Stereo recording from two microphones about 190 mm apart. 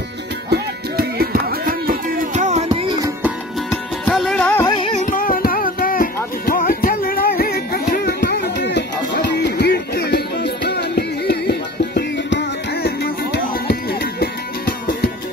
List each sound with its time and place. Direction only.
0.5 s music: 55° right (ahead or behind); by 2.9 s 40° right (ahead or behind)
3.0 s music: 10° right (ahead or behind)
4.6 s music: 25° left (ahead or behind)
4.9 s music: 45° left (ahead or behind)